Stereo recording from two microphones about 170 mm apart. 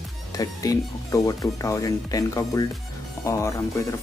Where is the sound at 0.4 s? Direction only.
20° left (ahead or behind).